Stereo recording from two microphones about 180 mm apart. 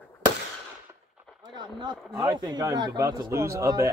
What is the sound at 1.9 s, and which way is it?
Speech, centre (ahead or behind).